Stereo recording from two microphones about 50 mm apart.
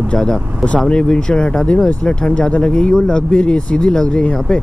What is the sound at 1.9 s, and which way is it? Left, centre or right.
Speech, left.